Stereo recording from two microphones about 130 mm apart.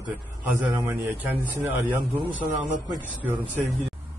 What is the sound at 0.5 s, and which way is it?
A man's voice, 15° right (ahead or behind).